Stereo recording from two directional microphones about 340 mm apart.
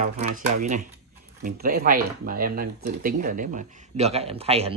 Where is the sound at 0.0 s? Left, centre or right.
Right.